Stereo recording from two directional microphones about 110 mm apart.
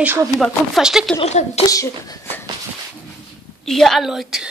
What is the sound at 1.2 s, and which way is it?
Speech, 85° left.